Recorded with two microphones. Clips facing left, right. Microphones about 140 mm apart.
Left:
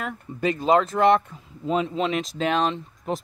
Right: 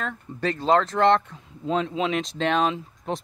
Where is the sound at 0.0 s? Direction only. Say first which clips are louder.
Left 2 dB; 10° left (ahead or behind).